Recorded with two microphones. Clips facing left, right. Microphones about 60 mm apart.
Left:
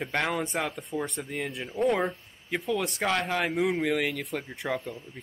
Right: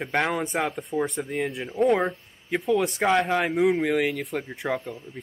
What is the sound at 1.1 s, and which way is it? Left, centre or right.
Speech, centre.